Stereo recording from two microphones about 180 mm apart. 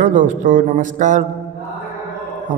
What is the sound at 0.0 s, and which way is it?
A man's voice, 45° right (ahead or behind).